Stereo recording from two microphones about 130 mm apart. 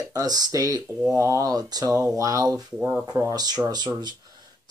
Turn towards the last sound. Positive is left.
turn(degrees=-35)  # may be behind; listen again after turning